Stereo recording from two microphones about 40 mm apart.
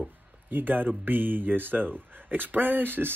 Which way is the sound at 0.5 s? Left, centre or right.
Right.